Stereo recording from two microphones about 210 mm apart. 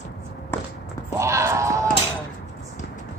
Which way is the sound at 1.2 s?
15° right (ahead or behind).